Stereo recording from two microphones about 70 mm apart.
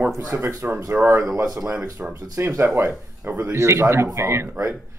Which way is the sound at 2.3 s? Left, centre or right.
Right.